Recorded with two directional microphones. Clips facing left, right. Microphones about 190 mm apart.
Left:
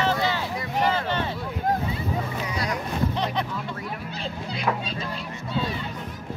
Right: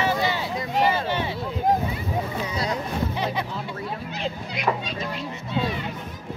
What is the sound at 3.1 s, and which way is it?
Music, 5° right (ahead or behind).